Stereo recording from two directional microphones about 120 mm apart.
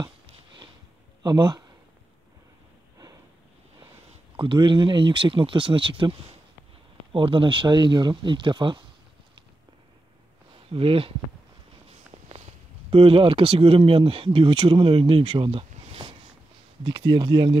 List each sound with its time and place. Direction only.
1.2 s speech: 35° right (ahead or behind)
4.4 s speech: 40° right (ahead or behind)
10.7 s speech: 50° right (ahead or behind)
12.9 s speech: 50° right (ahead or behind)
16.0 s a sound: 55° right (ahead or behind)
16.8 s speech: 40° right (ahead or behind)